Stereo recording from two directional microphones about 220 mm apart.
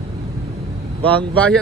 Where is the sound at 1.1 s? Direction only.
5° left (ahead or behind).